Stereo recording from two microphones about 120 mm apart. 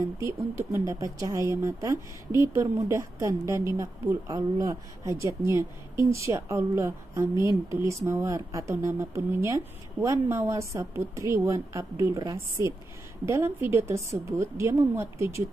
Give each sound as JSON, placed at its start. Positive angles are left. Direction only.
{"t": 0.2, "sound": "speech", "side_deg": -25}